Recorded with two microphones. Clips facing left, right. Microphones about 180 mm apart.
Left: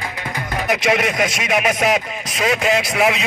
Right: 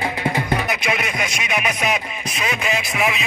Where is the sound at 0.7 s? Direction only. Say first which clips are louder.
Left 6 dB; 90° left.